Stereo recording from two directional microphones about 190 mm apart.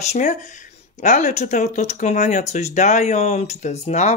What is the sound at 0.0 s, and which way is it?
Speech, 40° left (ahead or behind).